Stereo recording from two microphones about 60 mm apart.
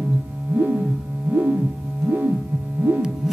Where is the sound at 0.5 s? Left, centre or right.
Right.